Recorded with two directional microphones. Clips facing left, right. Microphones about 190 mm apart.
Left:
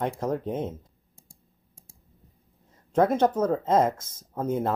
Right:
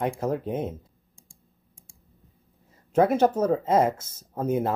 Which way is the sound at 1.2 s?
40° left (ahead or behind).